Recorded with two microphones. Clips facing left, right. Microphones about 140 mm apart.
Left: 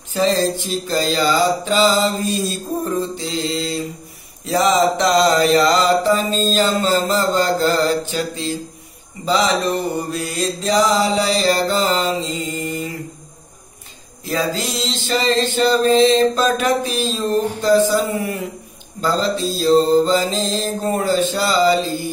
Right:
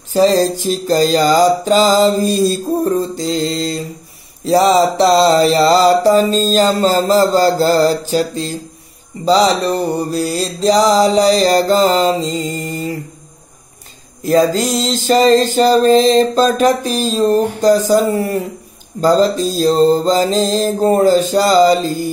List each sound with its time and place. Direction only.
0.1 s music: 40° right (ahead or behind)
14.2 s music: 45° right (ahead or behind)